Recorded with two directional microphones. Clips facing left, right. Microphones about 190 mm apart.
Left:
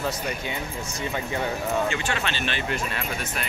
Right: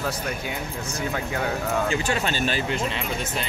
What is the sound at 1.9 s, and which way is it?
Speech, 40° right (ahead or behind).